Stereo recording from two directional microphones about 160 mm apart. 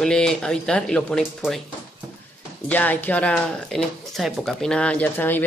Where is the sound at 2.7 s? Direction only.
10° left (ahead or behind).